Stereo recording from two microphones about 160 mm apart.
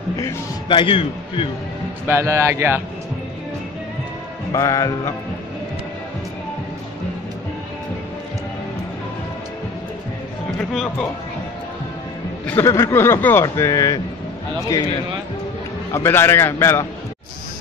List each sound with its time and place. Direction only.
0.7 s a man's voice: 35° left (ahead or behind)
2.0 s speech: 15° right (ahead or behind)
4.5 s music: 20° left (ahead or behind)
10.7 s speech: centre (ahead or behind)
12.4 s speech: 15° left (ahead or behind)
15.9 s speech: 15° left (ahead or behind)